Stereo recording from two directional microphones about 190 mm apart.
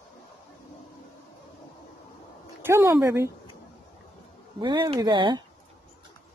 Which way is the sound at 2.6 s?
15° right (ahead or behind).